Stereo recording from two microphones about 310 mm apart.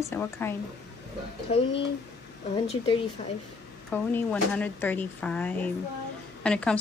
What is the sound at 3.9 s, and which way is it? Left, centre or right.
Speech, centre.